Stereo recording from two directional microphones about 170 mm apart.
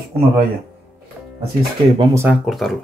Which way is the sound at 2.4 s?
Centre (ahead or behind).